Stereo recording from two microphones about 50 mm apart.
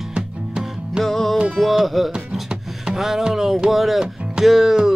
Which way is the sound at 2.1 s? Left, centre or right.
Centre.